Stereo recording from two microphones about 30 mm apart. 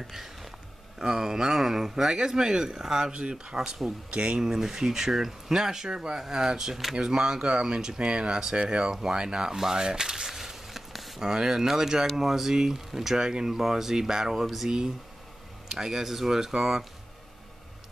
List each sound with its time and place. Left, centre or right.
0.9 s speech: centre
3.1 s speech: right
3.5 s speech: right
4.1 s speech: right
4.4 s speech: centre
6.7 s speech: centre
7.0 s speech: right
10.9 s a sound: centre
11.1 s speech: right
13.2 s speech: right
14.4 s speech: centre
15.7 s speech: centre